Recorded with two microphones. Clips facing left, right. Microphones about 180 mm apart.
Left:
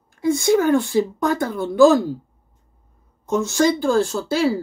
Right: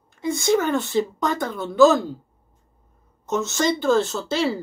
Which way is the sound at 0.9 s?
10° left (ahead or behind).